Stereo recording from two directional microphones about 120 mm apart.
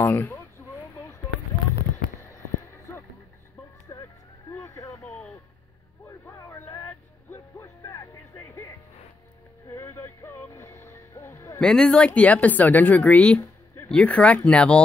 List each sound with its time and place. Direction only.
0.0 s speech: 15° left (ahead or behind)
2.1 s a sound: 25° left (ahead or behind)
3.9 s vehicle: 20° left (ahead or behind)
5.0 s a sound: 15° left (ahead or behind)
6.0 s vehicle: 25° left (ahead or behind)
6.9 s music: 15° left (ahead or behind)
11.6 s speech: 5° left (ahead or behind)